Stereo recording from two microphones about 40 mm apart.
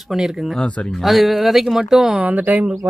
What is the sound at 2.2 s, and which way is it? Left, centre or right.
Speech, right.